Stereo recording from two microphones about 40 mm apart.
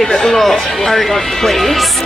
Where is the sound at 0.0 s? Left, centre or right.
Centre.